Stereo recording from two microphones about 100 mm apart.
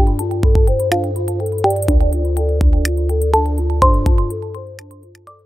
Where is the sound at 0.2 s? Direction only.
Centre (ahead or behind).